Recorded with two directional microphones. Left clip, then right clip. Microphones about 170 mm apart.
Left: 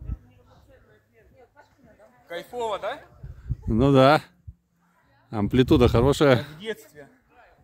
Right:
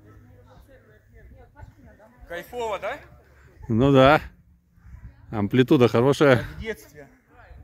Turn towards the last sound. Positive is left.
turn(degrees=-5)  # may be behind; listen again after turning